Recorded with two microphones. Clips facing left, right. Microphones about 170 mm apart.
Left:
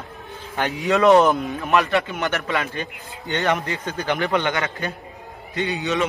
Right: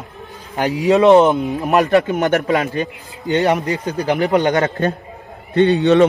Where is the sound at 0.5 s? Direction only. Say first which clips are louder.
Right 6 dB; 35° right (ahead or behind).